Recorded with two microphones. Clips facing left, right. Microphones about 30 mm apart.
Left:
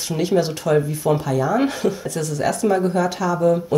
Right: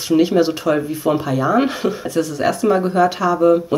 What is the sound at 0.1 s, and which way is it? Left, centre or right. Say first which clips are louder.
Speech: right 6 dB; centre.